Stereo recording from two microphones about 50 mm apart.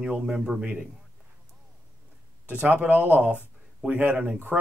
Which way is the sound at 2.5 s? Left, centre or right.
Right.